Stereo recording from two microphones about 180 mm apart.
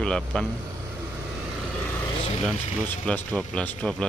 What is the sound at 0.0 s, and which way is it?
Speech, 5° left (ahead or behind).